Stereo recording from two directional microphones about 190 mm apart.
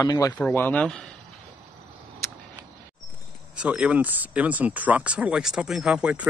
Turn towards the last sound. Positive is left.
turn(degrees=-5)  # may be behind; listen again after turning